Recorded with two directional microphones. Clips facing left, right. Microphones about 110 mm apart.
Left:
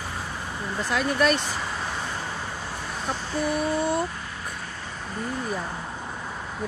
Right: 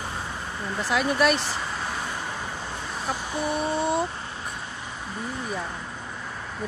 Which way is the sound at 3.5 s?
25° right (ahead or behind).